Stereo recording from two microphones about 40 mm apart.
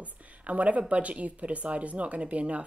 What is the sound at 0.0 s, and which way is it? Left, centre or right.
Speech, right.